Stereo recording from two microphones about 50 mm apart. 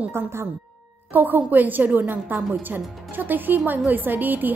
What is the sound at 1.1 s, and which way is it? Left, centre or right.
Speech, right.